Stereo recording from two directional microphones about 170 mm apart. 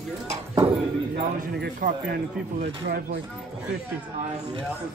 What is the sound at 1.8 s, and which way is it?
Speech, 55° right (ahead or behind).